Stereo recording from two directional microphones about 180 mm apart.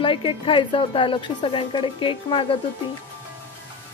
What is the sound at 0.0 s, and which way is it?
Speech, 30° left (ahead or behind).